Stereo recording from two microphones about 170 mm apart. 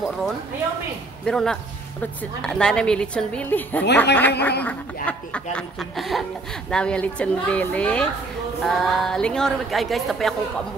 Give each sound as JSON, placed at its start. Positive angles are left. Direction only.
{"t": 1.2, "sound": "a woman's voice", "side_deg": 5}